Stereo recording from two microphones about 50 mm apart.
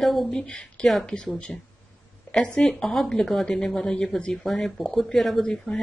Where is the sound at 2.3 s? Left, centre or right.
Centre.